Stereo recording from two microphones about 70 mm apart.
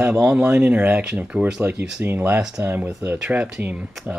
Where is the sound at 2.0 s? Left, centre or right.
Right.